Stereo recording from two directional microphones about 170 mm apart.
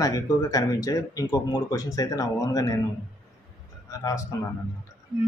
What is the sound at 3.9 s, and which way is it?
Speech, 20° left (ahead or behind).